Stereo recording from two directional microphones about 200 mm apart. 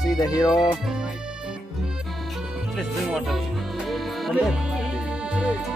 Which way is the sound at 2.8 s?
Centre (ahead or behind).